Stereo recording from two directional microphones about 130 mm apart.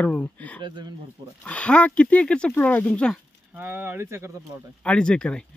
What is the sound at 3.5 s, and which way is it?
Speech, 15° right (ahead or behind).